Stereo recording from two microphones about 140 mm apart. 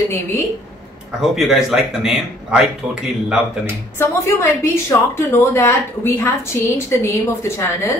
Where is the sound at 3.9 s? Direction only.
20° left (ahead or behind).